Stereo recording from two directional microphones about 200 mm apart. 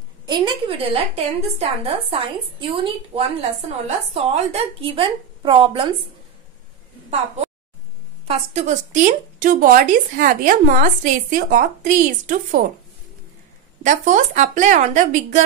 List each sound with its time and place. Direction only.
0.3 s a woman's voice: 25° right (ahead or behind)
8.3 s speech: 35° right (ahead or behind)
13.8 s speech: 40° right (ahead or behind)